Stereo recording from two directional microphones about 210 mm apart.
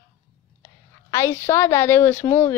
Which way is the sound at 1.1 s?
15° left (ahead or behind).